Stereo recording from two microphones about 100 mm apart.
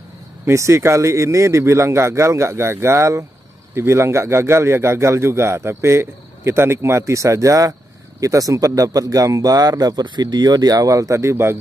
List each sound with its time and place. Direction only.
0.5 s speech: 30° right (ahead or behind)